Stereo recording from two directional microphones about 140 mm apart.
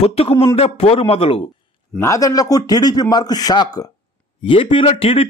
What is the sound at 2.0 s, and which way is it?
Speech, 25° left (ahead or behind).